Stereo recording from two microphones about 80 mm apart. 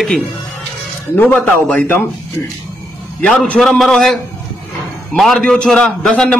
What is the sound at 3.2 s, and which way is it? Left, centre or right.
A man's voice, centre.